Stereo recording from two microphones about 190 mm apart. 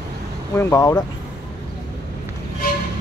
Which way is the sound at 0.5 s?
15° left (ahead or behind).